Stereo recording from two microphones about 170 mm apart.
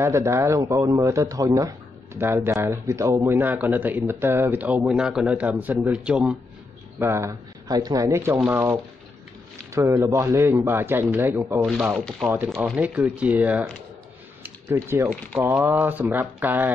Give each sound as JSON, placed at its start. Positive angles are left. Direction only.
{"t": 0.0, "sound": "a man's voice", "side_deg": -15}
{"t": 9.8, "sound": "a man's voice", "side_deg": -20}
{"t": 12.0, "sound": "speech", "side_deg": 5}
{"t": 12.6, "sound": "a man's voice", "side_deg": -10}